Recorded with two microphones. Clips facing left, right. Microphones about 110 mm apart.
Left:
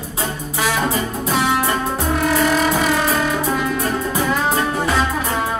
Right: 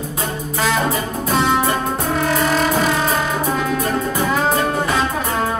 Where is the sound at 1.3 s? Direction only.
5° left (ahead or behind).